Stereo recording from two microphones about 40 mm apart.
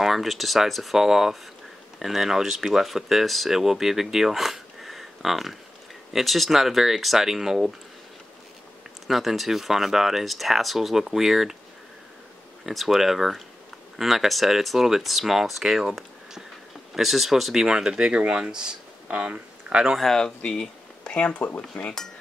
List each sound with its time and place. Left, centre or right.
0.0 s speech: centre
0.9 s speech: centre
9.0 s speech: centre
12.6 s speech: centre
15.6 s speech: centre
15.9 s a sound: centre
16.9 s speech: centre
17.6 s speech: centre
20.2 s speech: centre
21.8 s speech: left